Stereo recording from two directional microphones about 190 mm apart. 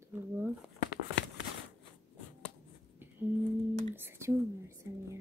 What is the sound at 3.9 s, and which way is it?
Speech, 10° right (ahead or behind).